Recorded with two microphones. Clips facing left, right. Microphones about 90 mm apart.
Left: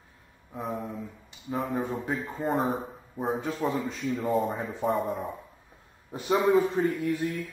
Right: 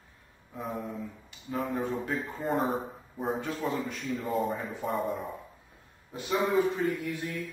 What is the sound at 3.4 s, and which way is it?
Speech, 15° left (ahead or behind).